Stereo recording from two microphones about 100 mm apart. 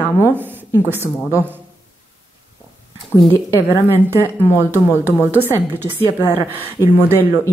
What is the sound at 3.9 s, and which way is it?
Speech, 25° right (ahead or behind).